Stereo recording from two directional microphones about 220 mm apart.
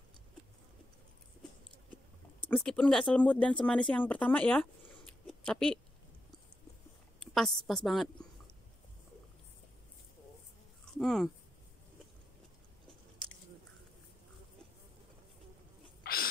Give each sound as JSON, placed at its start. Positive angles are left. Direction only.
{"t": 2.4, "sound": "speech", "side_deg": 5}
{"t": 7.3, "sound": "a woman's voice", "side_deg": 0}
{"t": 11.0, "sound": "speech", "side_deg": 0}
{"t": 16.0, "sound": "a sound", "side_deg": 40}